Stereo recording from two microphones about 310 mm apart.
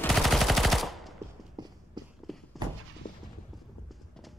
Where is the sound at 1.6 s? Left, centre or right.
Centre.